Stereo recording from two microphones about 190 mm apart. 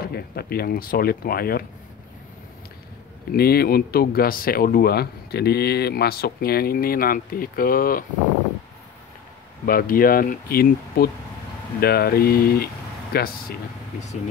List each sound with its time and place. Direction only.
0.0 s speech: 55° left (ahead or behind)
3.3 s speech: 55° left (ahead or behind)
9.7 s speech: 50° left (ahead or behind)